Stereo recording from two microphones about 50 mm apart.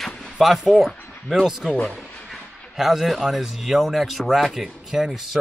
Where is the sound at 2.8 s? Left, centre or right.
Centre.